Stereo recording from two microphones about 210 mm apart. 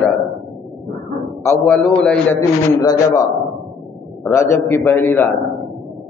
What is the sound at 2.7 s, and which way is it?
Speech, 15° left (ahead or behind).